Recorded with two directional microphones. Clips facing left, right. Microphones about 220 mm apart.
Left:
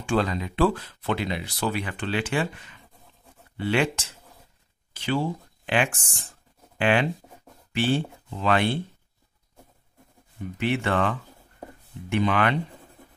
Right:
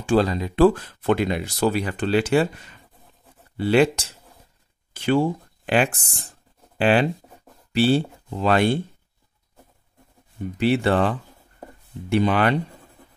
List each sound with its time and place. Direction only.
0.0 s speech: 35° right (ahead or behind)
4.9 s speech: 50° right (ahead or behind)
5.7 s speech: 35° right (ahead or behind)
10.6 s speech: 35° right (ahead or behind)